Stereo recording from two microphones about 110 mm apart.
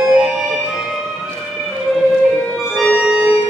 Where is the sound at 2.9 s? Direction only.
10° right (ahead or behind).